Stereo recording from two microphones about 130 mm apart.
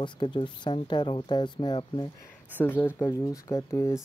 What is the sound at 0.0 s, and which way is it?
Speech, 40° left (ahead or behind).